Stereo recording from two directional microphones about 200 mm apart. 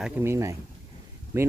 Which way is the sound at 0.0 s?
10° right (ahead or behind).